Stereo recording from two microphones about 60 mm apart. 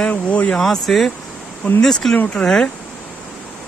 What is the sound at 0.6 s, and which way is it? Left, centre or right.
Speech, centre.